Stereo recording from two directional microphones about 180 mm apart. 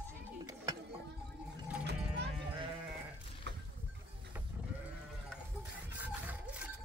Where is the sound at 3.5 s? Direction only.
70° right (ahead or behind).